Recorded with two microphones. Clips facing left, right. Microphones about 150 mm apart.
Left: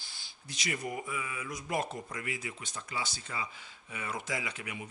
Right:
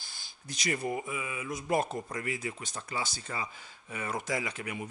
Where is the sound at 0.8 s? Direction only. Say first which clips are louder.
Right 3 dB; 25° right (ahead or behind).